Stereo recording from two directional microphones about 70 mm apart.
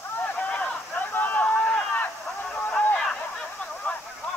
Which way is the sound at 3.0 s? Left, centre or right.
Centre.